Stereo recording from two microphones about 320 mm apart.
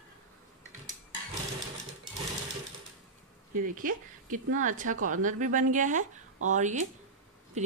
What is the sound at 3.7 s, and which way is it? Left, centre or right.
Speech, right.